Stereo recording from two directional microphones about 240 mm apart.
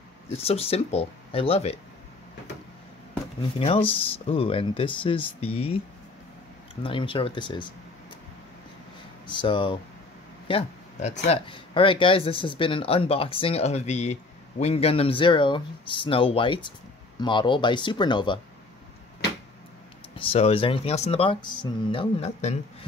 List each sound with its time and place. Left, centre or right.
0.3 s speech: left
3.5 s speech: left
6.8 s speech: left
9.3 s speech: centre
20.2 s speech: left